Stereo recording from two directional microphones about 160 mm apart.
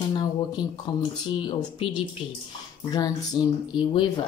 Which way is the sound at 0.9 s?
25° left (ahead or behind).